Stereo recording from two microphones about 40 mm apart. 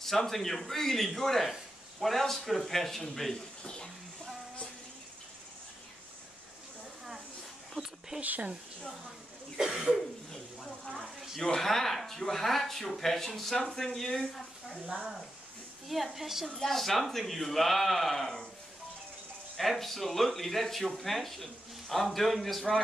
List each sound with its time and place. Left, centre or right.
0.0 s speech: centre
3.6 s speech: centre
7.7 s a sound: centre
8.2 s speech: right
9.6 s a woman's voice: centre
10.3 s a sound: centre
11.0 s speech: centre
11.6 s speech: centre
15.9 s a woman's voice: centre
16.5 s speech: centre
19.5 s speech: centre